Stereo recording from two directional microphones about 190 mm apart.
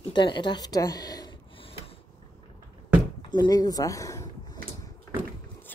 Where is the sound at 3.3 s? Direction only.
20° left (ahead or behind).